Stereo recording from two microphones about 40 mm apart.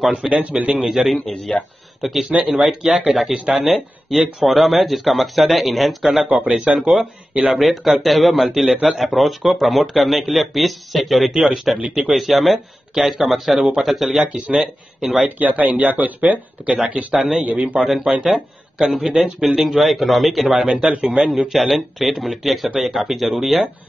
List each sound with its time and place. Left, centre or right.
0.1 s speech: right
0.8 s speech: centre
2.5 s speech: centre
3.4 s a man's voice: centre
3.7 s speech: centre
6.6 s a man's voice: right
7.4 s speech: centre
11.3 s speech: centre
11.8 s a man's voice: right
12.1 s speech: centre
15.2 s speech: right
17.1 s speech: centre
20.5 s a man's voice: centre
21.2 s speech: centre